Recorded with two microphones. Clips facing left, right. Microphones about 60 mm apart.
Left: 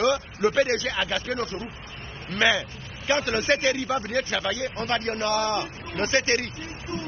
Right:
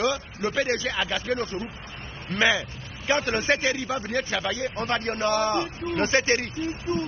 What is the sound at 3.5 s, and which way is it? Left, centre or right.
Speech, centre.